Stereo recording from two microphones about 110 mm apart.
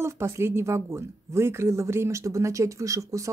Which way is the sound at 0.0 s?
25° right (ahead or behind).